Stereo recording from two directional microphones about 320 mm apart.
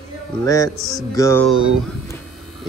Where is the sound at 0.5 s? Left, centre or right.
Centre.